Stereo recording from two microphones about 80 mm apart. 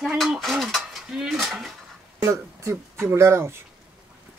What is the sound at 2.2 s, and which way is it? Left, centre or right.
Speech, right.